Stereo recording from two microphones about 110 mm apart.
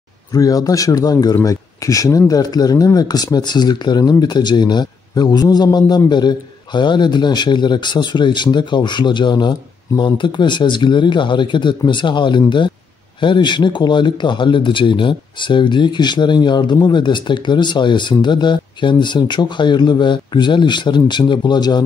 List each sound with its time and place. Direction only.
0.3 s speech: 35° left (ahead or behind)